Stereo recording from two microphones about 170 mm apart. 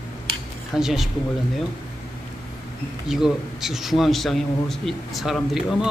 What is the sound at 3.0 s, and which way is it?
A man's voice, 5° right (ahead or behind).